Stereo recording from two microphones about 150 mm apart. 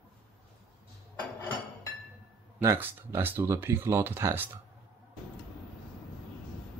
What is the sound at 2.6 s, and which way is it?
Speech, 15° right (ahead or behind).